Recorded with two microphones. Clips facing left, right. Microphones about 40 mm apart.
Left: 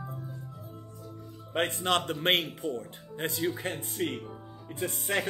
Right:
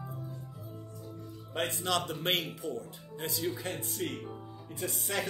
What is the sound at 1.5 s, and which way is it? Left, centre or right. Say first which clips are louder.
Speech: left 4 dB; left.